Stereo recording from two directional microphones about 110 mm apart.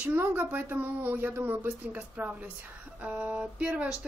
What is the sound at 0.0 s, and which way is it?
A woman's voice, 15° right (ahead or behind).